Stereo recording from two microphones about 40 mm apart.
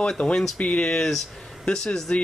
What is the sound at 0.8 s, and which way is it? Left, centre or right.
Speech, centre.